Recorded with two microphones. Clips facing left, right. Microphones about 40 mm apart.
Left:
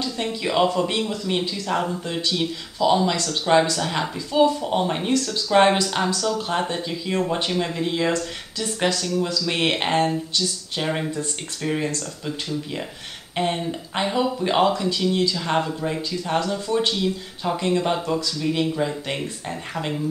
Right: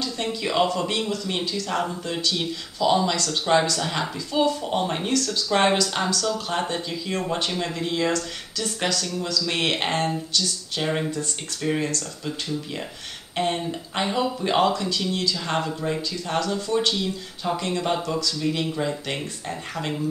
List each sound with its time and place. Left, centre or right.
0.0 s speech: centre
5.1 s speech: centre
13.4 s speech: centre